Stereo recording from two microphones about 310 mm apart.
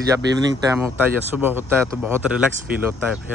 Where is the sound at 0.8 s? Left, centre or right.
Centre.